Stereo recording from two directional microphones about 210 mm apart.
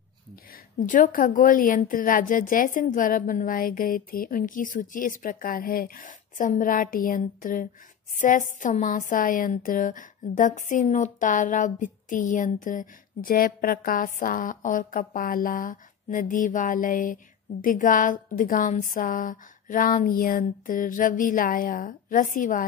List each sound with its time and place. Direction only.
0.5 s a woman's voice: 40° left (ahead or behind)